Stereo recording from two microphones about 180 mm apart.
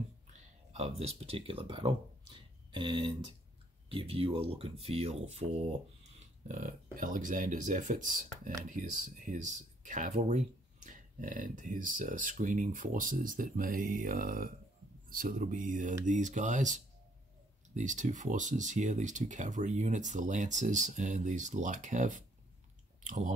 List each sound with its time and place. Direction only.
0.7 s speech: 35° right (ahead or behind)